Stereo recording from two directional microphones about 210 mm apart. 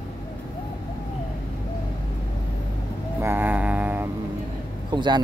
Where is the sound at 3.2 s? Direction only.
10° right (ahead or behind).